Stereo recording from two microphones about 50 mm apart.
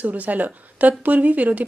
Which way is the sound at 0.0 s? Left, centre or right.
Right.